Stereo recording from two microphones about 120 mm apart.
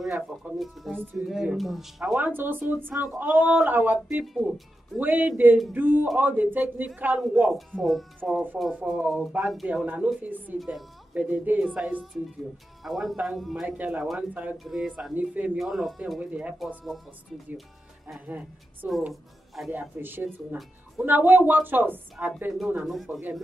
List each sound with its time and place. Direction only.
0.0 s speech: centre (ahead or behind)
2.1 s speech: 15° right (ahead or behind)
4.1 s speech: 5° right (ahead or behind)
4.9 s speech: 15° right (ahead or behind)
7.2 s speech: 5° right (ahead or behind)
14.6 s speech: centre (ahead or behind)
15.5 s speech: centre (ahead or behind)
16.2 s speech: 10° right (ahead or behind)
16.5 s speech: centre (ahead or behind)
18.2 s speech: 15° right (ahead or behind)
22.5 s speech: centre (ahead or behind)
23.1 s speech: 15° right (ahead or behind)